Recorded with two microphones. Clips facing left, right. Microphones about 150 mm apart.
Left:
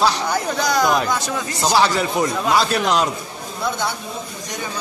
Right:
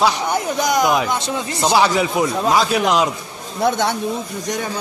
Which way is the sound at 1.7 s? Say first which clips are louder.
Right 2 dB; 5° right (ahead or behind).